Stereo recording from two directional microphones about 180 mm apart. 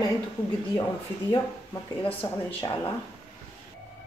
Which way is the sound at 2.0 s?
15° left (ahead or behind).